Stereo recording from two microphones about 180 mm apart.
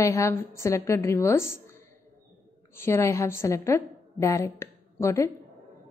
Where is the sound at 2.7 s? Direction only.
15° left (ahead or behind).